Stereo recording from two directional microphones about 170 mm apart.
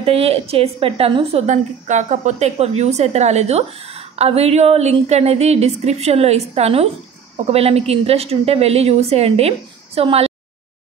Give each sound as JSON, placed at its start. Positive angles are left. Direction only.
{"t": 0.0, "sound": "a woman's voice", "side_deg": -35}